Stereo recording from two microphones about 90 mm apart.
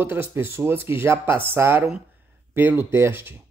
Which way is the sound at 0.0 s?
25° right (ahead or behind).